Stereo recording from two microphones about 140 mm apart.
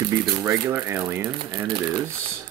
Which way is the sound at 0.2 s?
20° right (ahead or behind).